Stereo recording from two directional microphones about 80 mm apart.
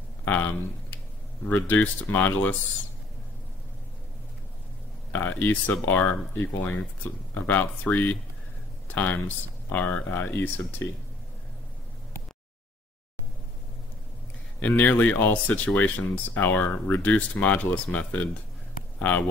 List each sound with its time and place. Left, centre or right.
0.2 s speech: left
5.1 s speech: left
14.6 s speech: left